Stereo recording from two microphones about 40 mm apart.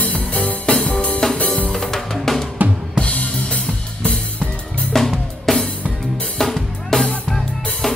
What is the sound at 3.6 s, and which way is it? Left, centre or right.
Music, left.